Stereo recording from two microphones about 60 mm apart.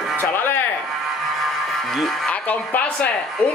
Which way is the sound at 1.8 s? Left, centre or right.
Centre.